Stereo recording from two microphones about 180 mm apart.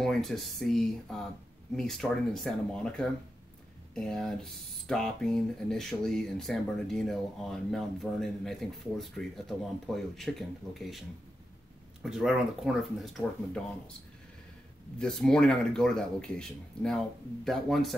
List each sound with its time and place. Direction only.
0.0 s speech: centre (ahead or behind)
15.0 s speech: 5° left (ahead or behind)